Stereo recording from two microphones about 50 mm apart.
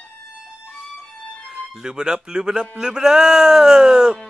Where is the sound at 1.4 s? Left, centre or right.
Centre.